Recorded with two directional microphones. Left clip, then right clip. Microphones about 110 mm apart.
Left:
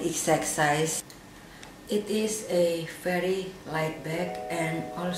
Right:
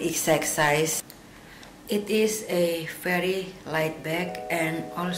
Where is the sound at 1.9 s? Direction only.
35° right (ahead or behind).